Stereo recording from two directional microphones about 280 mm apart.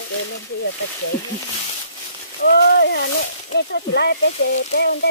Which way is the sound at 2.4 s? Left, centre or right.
Left.